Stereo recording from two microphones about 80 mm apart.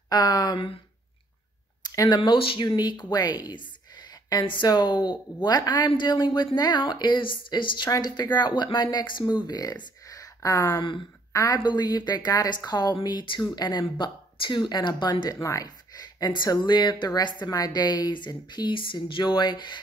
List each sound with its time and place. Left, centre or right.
0.1 s speech: left
2.0 s speech: left
7.9 s speech: left
9.5 s speech: left
10.0 s a sound: left
11.3 s speech: left
15.3 s speech: left
17.5 s speech: left